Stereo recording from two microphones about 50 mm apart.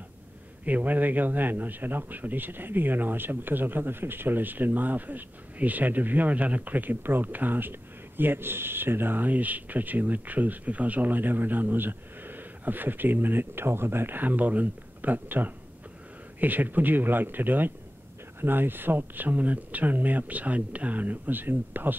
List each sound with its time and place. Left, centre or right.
0.7 s speech: right